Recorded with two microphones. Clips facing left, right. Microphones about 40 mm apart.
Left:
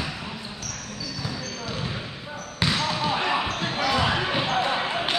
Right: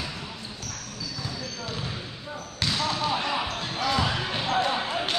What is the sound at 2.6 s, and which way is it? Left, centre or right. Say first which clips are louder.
Basketball bounce: left 2 dB; left.